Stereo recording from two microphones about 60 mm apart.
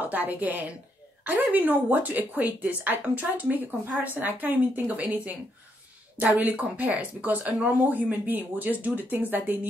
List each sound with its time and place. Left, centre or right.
0.0 s speech: right